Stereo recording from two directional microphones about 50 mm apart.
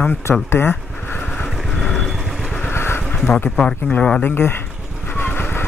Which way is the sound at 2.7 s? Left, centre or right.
Left.